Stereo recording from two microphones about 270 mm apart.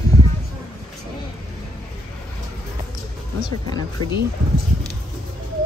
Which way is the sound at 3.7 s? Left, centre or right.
Centre.